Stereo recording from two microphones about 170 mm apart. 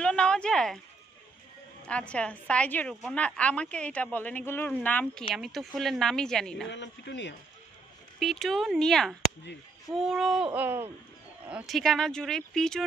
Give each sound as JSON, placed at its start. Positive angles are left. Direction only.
{"t": 0.0, "sound": "a sound", "side_deg": 5}
{"t": 1.9, "sound": "a woman's voice", "side_deg": 5}
{"t": 6.7, "sound": "speech", "side_deg": 90}
{"t": 8.2, "sound": "speech", "side_deg": 0}